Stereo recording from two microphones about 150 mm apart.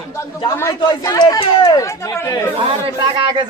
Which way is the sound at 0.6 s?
20° left (ahead or behind).